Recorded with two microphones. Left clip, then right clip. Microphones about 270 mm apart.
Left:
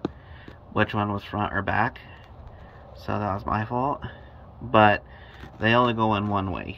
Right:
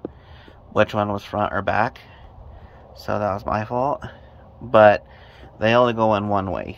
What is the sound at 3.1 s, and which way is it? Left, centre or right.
Speech, centre.